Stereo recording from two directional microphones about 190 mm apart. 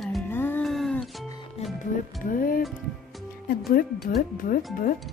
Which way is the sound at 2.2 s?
45° left (ahead or behind).